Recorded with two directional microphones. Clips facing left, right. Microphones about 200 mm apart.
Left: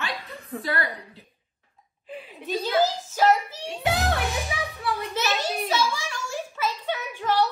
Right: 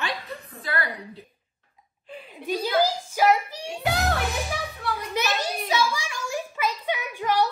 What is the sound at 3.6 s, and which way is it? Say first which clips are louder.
A woman's voice: even; centre (ahead or behind).